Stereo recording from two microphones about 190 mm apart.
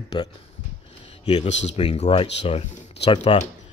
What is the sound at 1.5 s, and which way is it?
Speech, 75° left (ahead or behind).